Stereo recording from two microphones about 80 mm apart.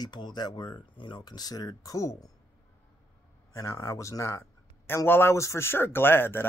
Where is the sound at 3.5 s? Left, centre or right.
Left.